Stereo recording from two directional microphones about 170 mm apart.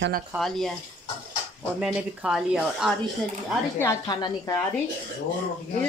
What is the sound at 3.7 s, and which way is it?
Speech, 20° left (ahead or behind).